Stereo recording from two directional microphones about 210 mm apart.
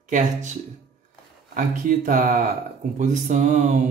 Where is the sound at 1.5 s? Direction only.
40° right (ahead or behind).